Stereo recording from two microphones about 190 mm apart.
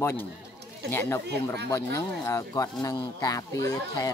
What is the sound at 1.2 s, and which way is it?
Speech, 60° right (ahead or behind).